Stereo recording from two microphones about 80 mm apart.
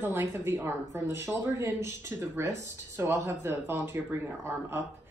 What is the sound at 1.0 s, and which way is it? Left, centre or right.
Speech, right.